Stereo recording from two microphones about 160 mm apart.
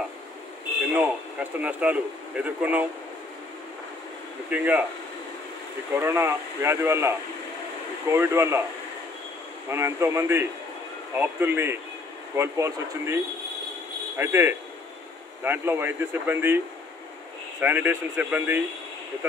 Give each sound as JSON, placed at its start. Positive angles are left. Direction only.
{"t": 0.9, "sound": "speech", "side_deg": -10}
{"t": 4.5, "sound": "speech", "side_deg": -10}
{"t": 5.9, "sound": "speech", "side_deg": -15}
{"t": 9.7, "sound": "speech", "side_deg": -15}
{"t": 14.1, "sound": "speech", "side_deg": -15}